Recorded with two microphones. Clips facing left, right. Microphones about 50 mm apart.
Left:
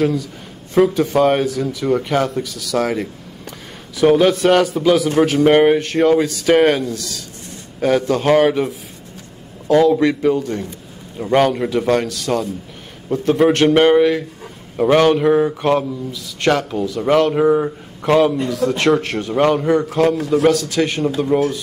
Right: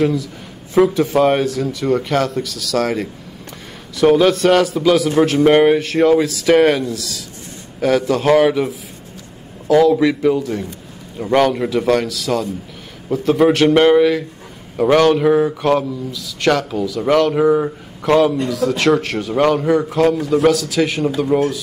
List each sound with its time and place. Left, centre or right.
0.7 s speech: centre
7.8 s speech: centre
9.7 s a man's voice: centre
9.9 s speech: centre